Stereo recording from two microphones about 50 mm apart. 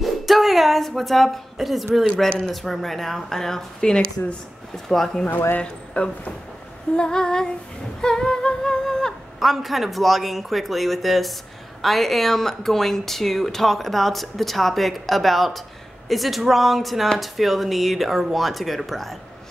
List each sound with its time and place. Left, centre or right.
0.0 s speech: centre
2.2 s speech: centre
2.5 s speech: centre
6.0 s speech: left
8.0 s humming: centre
9.4 s speech: centre